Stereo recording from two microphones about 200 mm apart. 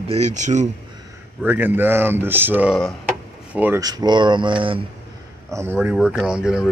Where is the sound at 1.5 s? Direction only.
10° right (ahead or behind).